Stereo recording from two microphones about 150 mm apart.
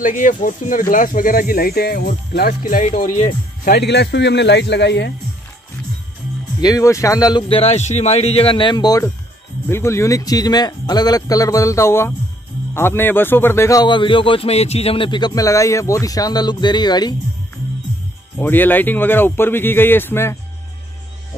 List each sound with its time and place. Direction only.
0.0 s speech: 60° left (ahead or behind); by 4.4 s 90° left
6.6 s a man's voice: 20° left (ahead or behind)
7.4 s a man's voice: 40° left (ahead or behind)
18.4 s speech: 10° left (ahead or behind)